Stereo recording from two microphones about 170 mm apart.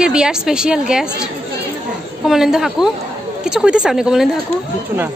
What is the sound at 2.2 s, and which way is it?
A woman's voice, centre (ahead or behind).